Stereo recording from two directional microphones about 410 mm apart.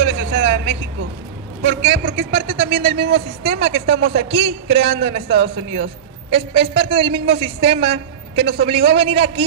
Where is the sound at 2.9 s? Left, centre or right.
Right.